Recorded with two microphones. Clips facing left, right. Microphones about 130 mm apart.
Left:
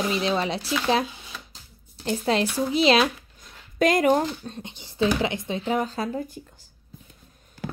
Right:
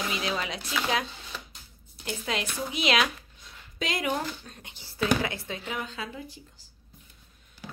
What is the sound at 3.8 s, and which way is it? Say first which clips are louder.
Speech: left 10 dB; 45° left (ahead or behind).